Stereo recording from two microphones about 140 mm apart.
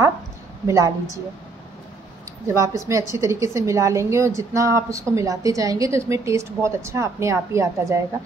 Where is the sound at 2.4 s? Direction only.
20° right (ahead or behind).